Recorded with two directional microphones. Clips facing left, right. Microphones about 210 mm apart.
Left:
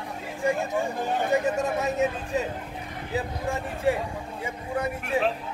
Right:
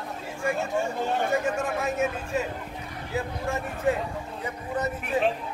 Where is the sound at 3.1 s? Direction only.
15° left (ahead or behind).